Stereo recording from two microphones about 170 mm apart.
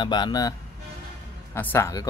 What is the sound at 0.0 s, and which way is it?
Speech, 25° left (ahead or behind).